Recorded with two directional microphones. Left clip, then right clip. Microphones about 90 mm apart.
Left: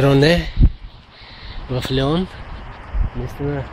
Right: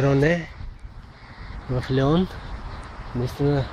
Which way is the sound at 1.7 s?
15° right (ahead or behind).